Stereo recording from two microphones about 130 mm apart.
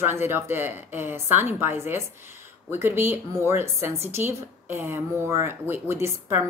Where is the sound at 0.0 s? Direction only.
15° right (ahead or behind).